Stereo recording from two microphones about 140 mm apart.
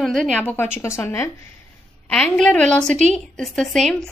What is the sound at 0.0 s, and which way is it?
A woman's voice, centre (ahead or behind).